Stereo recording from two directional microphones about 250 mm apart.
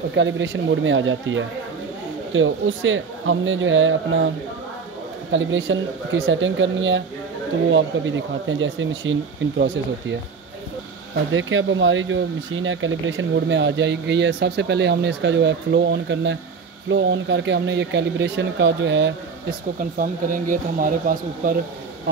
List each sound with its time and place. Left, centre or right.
0.1 s speech: right
5.3 s speech: right
11.3 s speech: right
19.8 s speech: right
22.1 s speech: right